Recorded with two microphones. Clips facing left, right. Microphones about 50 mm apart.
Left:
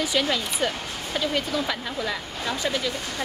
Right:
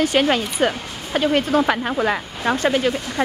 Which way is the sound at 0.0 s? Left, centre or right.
Right.